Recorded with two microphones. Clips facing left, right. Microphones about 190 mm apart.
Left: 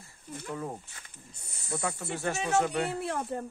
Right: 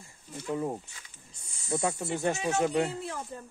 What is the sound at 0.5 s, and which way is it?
Speech, 20° right (ahead or behind).